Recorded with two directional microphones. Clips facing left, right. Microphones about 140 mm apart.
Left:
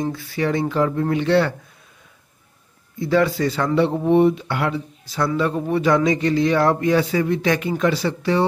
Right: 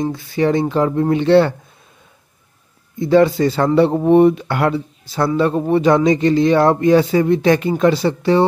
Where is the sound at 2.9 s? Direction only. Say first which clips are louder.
Right 6 dB; 25° right (ahead or behind); by 4.7 s 50° right (ahead or behind).